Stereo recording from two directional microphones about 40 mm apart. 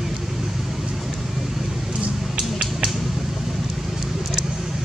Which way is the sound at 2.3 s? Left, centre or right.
Right.